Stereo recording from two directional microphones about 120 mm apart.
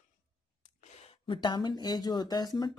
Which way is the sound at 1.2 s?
40° left (ahead or behind).